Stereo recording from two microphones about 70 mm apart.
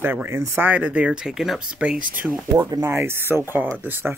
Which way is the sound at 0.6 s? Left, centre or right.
Right.